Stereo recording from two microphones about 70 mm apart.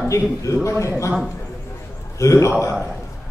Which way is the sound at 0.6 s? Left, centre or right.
Left.